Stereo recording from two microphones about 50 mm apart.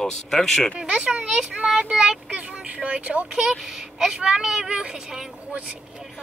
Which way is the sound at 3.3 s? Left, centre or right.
Centre.